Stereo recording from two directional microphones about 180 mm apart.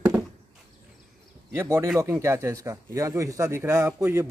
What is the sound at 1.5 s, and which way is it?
Speech, 15° right (ahead or behind).